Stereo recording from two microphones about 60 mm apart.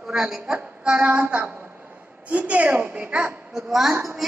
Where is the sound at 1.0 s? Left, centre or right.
Right.